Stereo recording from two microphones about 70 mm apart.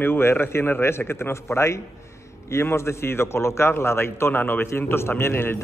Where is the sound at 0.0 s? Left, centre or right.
Left.